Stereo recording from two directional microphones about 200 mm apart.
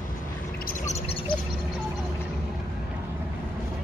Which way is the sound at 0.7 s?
40° left (ahead or behind).